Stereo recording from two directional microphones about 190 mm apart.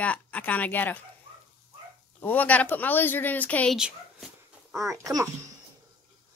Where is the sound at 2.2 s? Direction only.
10° left (ahead or behind).